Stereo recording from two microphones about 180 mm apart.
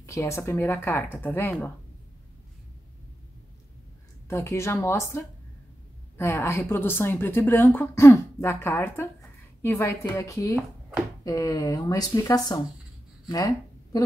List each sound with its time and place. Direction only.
0.0 s a woman's voice: 15° left (ahead or behind)
4.3 s a woman's voice: 15° left (ahead or behind)